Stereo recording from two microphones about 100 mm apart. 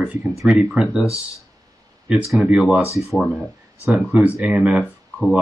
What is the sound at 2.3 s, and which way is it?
Speech, 5° right (ahead or behind).